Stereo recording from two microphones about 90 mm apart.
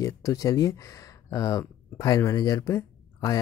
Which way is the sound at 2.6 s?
35° left (ahead or behind).